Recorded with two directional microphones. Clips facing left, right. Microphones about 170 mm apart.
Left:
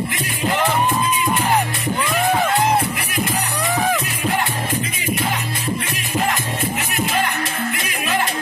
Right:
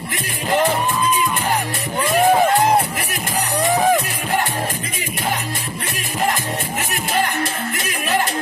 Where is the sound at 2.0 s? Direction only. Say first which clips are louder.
Right 5 dB; 40° right (ahead or behind).